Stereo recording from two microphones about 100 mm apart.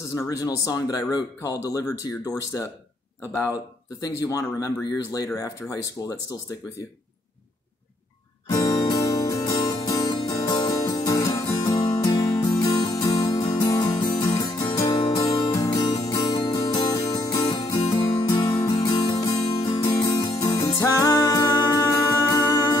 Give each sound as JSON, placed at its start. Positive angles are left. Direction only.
{"t": 0.1, "sound": "speech", "side_deg": 30}
{"t": 4.0, "sound": "speech", "side_deg": 35}
{"t": 8.5, "sound": "music", "side_deg": 45}
{"t": 11.8, "sound": "music", "side_deg": 50}
{"t": 20.6, "sound": "music", "side_deg": 30}